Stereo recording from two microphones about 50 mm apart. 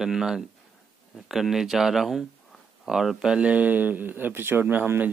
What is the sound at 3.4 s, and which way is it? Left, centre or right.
Speech, right.